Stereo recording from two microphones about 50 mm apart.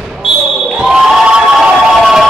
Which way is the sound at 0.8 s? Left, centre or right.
Centre.